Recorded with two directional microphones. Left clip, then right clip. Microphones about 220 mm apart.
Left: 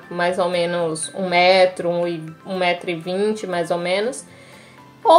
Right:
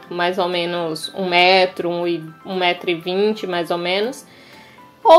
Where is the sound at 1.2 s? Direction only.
45° right (ahead or behind).